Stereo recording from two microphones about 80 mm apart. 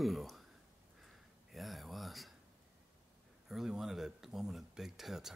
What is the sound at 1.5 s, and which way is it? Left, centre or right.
Speech, centre.